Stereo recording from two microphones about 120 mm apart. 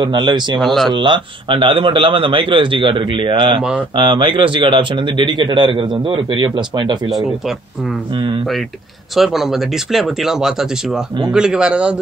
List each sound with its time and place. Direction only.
0.0 s speech: 40° right (ahead or behind)
0.6 s speech: centre (ahead or behind)
0.9 s a man's voice: 40° right (ahead or behind)
7.1 s speech: centre (ahead or behind)
8.1 s speech: 40° right (ahead or behind)
9.1 s speech: centre (ahead or behind)